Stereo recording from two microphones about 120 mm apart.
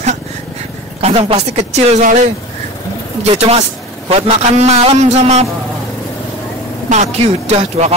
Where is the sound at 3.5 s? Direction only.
60° right (ahead or behind).